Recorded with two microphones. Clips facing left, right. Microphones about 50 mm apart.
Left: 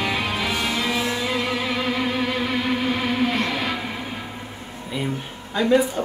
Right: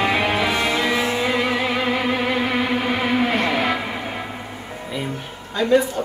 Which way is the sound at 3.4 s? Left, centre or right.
Right.